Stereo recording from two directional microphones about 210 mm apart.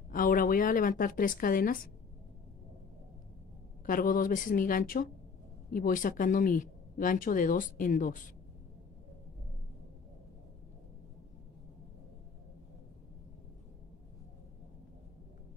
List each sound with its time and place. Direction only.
0.1 s a woman's voice: 40° left (ahead or behind)
3.8 s speech: 40° left (ahead or behind)